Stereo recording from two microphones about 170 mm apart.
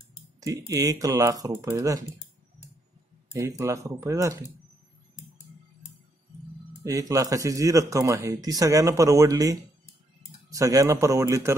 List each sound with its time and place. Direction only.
0.4 s speech: 20° right (ahead or behind)
3.3 s speech: 20° right (ahead or behind)
6.8 s speech: 20° right (ahead or behind)